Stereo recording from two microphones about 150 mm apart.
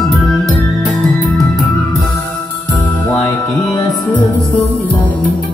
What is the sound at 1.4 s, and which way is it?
Music, 25° left (ahead or behind).